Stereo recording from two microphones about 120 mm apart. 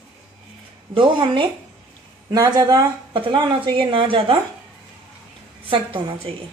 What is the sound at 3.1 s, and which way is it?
A woman's voice, 40° right (ahead or behind).